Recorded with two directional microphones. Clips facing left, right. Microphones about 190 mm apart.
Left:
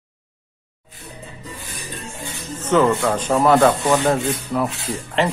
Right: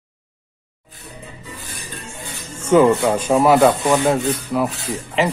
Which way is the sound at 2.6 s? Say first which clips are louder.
Right 4 dB; 10° right (ahead or behind).